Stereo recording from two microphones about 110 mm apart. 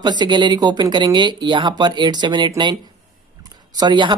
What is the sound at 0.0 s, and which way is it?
Speech, 40° right (ahead or behind).